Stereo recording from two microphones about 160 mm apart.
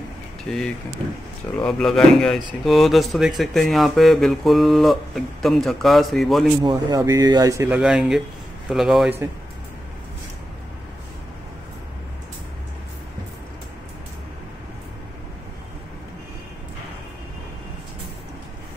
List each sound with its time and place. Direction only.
0.5 s speech: 5° left (ahead or behind)
6.6 s speech: 25° right (ahead or behind)
7.7 s speech: 5° right (ahead or behind)